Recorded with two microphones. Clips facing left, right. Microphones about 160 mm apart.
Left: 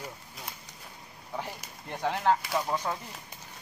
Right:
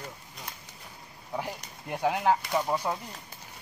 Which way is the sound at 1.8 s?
10° right (ahead or behind).